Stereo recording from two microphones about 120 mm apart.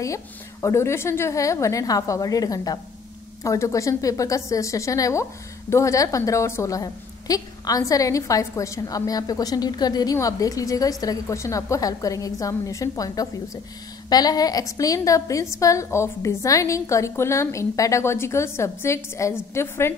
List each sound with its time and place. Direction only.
0.0 s a woman's voice: 25° left (ahead or behind)